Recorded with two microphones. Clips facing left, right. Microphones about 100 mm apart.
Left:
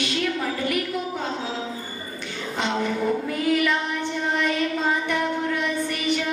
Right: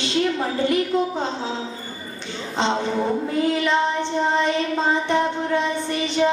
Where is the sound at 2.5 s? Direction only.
25° right (ahead or behind).